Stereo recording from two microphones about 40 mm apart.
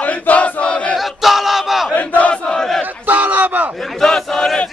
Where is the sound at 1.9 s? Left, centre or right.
Left.